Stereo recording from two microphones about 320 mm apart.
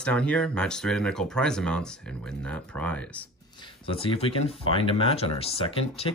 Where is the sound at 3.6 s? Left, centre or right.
Centre.